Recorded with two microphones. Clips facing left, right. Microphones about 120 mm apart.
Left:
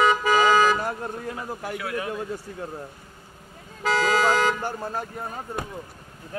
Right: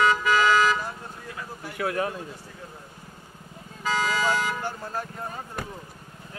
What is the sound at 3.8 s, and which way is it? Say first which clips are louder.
Vehicle: left 4 dB; 90° left.